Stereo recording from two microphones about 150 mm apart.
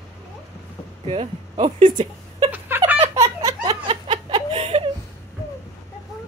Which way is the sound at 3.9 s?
35° right (ahead or behind).